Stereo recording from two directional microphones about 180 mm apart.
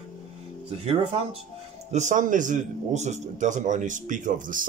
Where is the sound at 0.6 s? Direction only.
30° right (ahead or behind).